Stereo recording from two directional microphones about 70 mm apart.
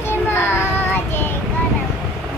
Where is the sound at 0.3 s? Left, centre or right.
Left.